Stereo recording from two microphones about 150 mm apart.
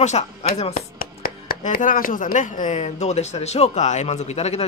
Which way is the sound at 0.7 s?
75° left (ahead or behind).